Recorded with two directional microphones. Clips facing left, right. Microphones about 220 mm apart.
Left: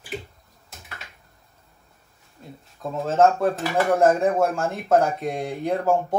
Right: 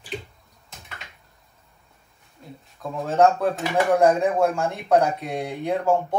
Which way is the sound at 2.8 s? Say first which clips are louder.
Even; centre (ahead or behind).